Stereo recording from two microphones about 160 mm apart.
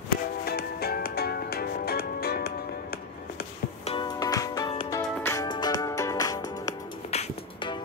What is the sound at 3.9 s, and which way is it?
Music, 30° left (ahead or behind).